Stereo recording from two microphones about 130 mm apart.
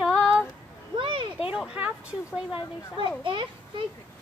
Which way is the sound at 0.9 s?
40° right (ahead or behind).